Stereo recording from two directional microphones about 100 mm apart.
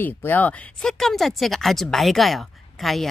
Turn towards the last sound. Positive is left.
turn(degrees=0)  # may be behind; listen again after turning